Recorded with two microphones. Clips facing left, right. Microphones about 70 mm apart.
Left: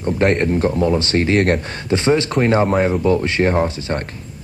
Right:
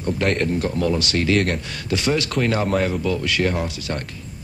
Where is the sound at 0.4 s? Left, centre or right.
Left.